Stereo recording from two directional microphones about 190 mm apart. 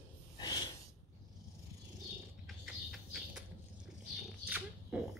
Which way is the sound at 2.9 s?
Centre (ahead or behind).